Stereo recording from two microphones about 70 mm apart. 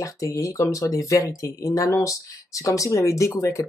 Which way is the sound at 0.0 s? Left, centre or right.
Left.